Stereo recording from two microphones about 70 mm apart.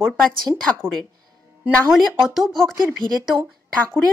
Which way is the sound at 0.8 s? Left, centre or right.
Right.